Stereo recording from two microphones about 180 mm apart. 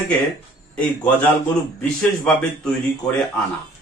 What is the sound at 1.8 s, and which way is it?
Speech, 5° left (ahead or behind).